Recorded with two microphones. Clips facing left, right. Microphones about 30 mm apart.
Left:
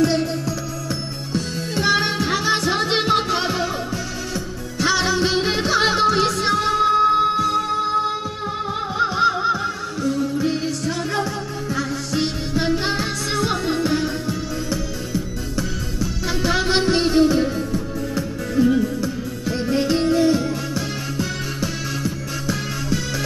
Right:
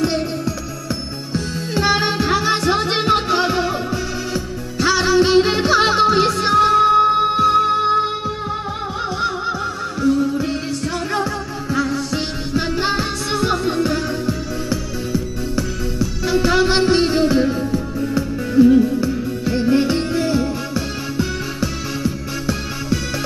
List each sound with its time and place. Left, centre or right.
1.3 s music: centre
7.3 s music: right
8.9 s snicker: centre
11.0 s music: centre
13.7 s music: centre
16.0 s music: centre